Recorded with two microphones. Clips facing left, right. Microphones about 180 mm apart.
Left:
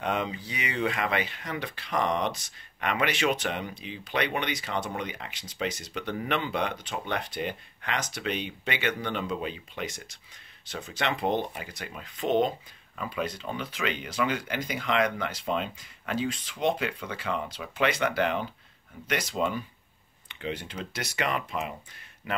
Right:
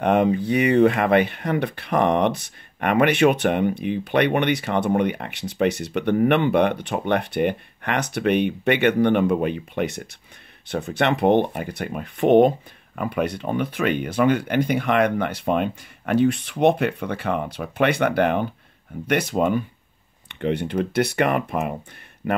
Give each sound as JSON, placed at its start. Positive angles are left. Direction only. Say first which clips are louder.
{"t": 0.0, "sound": "speech", "louder": "right 12 dB", "side_deg": -60}